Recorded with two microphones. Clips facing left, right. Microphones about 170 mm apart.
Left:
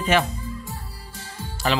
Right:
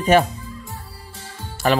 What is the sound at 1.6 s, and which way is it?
Speech, 50° right (ahead or behind).